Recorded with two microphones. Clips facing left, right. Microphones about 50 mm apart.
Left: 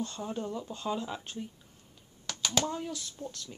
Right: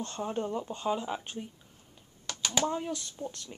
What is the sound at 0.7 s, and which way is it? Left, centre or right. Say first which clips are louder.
Speech: right 3 dB; centre.